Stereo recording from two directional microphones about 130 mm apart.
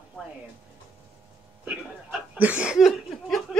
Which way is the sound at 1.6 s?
10° right (ahead or behind).